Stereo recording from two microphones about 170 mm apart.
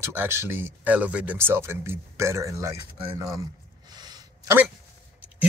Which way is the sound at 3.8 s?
25° right (ahead or behind).